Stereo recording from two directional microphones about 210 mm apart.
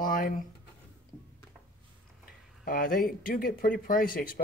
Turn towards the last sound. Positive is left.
turn(degrees=45)  # may be behind; listen again after turning